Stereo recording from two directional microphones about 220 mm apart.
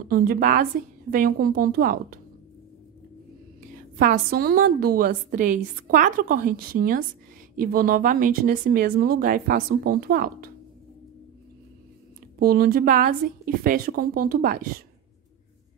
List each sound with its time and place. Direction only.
0.1 s a woman's voice: 40° right (ahead or behind)
4.0 s a woman's voice: 40° right (ahead or behind)
12.4 s a woman's voice: 40° right (ahead or behind)